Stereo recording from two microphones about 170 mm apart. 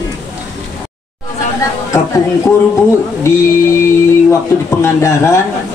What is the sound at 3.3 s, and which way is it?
Speech, 15° left (ahead or behind).